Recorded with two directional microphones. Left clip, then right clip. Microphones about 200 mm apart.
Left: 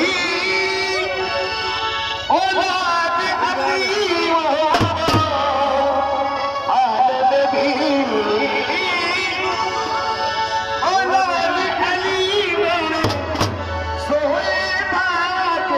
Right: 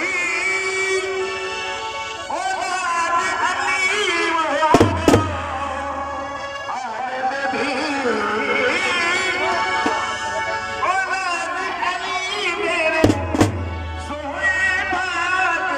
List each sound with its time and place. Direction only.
3.6 s a sound: 25° left (ahead or behind)
6.7 s music: 20° left (ahead or behind)
10.9 s music: 30° left (ahead or behind)